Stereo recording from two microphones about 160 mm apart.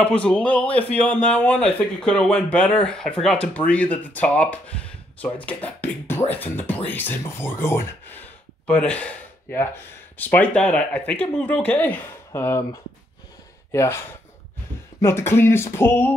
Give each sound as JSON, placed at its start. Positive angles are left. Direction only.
{"t": 0.0, "sound": "a man's voice", "side_deg": 5}
{"t": 13.7, "sound": "a man's voice", "side_deg": 15}